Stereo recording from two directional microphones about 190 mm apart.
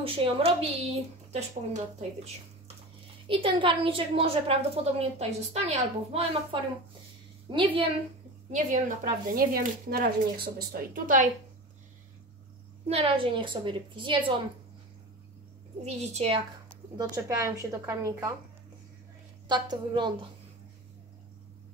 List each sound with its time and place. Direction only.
0.0 s a woman's voice: 30° right (ahead or behind)
3.3 s a woman's voice: 25° right (ahead or behind)
8.5 s speech: 40° right (ahead or behind)
12.8 s a woman's voice: 30° right (ahead or behind)
15.8 s a woman's voice: 35° right (ahead or behind)
16.9 s speech: 20° right (ahead or behind)
19.4 s a woman's voice: 25° right (ahead or behind)